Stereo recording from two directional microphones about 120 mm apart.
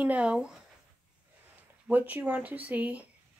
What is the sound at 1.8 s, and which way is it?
Speech, 15° right (ahead or behind).